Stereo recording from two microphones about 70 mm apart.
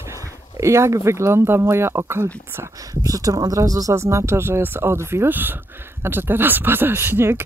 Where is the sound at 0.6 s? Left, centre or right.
Right.